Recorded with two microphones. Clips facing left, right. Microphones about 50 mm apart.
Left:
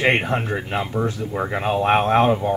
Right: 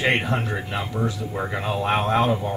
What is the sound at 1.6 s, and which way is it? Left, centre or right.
Speech, left.